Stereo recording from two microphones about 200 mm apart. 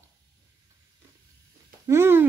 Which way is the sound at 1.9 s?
10° right (ahead or behind).